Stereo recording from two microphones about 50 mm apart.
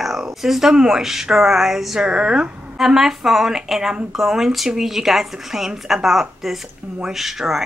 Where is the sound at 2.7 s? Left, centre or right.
Centre.